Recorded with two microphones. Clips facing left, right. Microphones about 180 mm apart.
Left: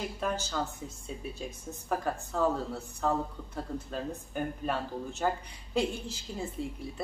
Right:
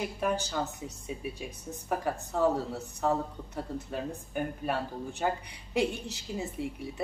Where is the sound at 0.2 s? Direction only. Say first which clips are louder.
Right 3 dB; 10° right (ahead or behind).